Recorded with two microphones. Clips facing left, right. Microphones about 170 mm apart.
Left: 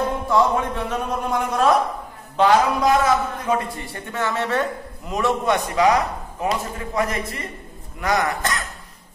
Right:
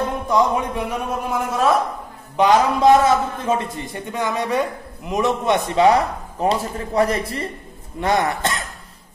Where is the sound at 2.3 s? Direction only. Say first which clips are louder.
Right 1 dB; 20° right (ahead or behind).